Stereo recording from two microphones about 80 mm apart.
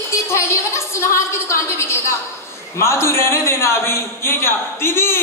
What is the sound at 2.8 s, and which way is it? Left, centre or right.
A man's voice, left.